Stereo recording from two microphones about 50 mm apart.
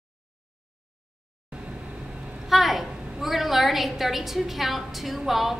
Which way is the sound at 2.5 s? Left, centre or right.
Centre.